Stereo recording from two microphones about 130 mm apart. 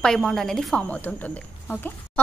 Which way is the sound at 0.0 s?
5° left (ahead or behind).